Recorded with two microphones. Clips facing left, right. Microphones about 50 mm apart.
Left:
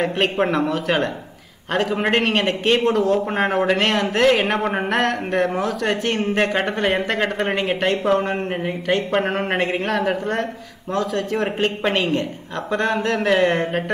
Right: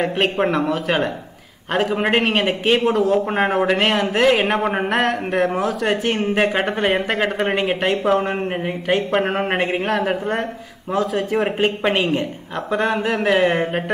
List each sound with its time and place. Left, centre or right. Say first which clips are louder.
0.0 s a man's voice: right 1 dB; centre